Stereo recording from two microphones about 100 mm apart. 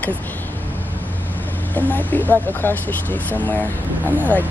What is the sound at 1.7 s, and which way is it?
Speech, 20° left (ahead or behind).